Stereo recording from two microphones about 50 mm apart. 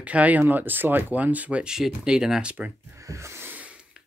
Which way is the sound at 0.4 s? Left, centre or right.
Right.